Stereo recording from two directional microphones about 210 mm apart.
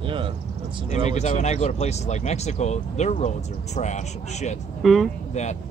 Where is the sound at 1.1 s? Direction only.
35° left (ahead or behind).